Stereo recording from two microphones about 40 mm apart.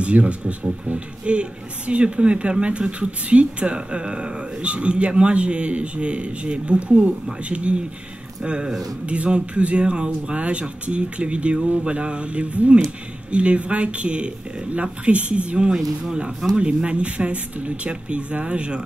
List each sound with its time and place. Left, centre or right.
0.0 s speech: right